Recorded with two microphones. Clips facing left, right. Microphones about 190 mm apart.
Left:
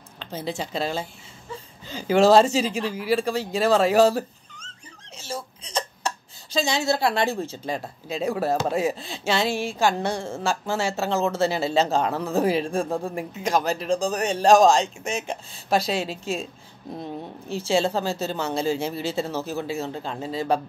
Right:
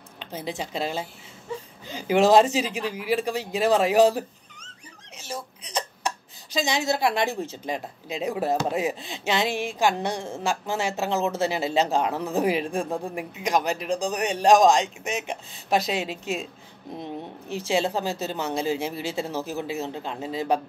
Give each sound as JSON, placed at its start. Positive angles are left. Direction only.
{"t": 0.2, "sound": "speech", "side_deg": -15}
{"t": 17.5, "sound": "speech", "side_deg": -15}